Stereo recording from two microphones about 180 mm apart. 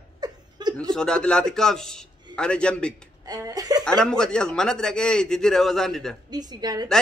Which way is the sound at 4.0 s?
5° left (ahead or behind).